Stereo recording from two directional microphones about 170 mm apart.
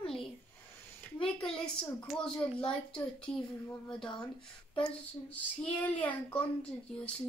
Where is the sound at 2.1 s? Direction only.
5° left (ahead or behind).